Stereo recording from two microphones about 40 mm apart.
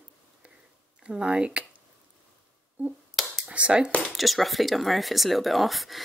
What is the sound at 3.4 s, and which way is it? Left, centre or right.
Speech, right.